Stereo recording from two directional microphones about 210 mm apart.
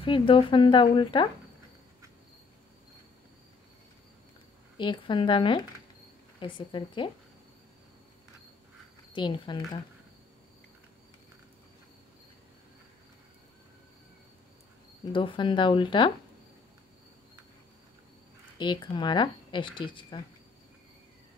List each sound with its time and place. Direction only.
0.0 s speech: 25° left (ahead or behind)
4.7 s speech: 25° left (ahead or behind)
9.1 s speech: 20° left (ahead or behind)
15.1 s speech: 25° left (ahead or behind)
18.6 s speech: 20° left (ahead or behind)